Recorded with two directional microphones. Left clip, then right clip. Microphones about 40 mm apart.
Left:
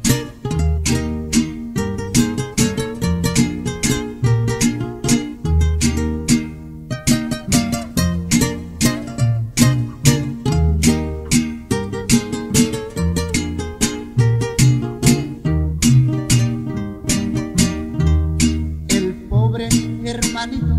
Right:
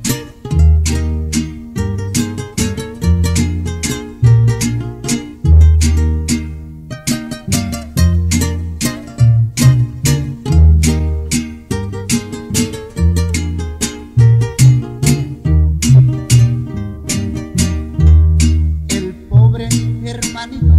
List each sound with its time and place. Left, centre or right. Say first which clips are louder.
0.0 s music: left 1 dB; left